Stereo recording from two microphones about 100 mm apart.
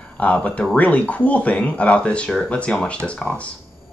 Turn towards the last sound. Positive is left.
turn(degrees=10)  # may be behind; listen again after turning